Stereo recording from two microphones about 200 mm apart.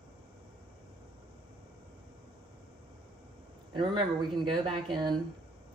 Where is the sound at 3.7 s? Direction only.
20° right (ahead or behind).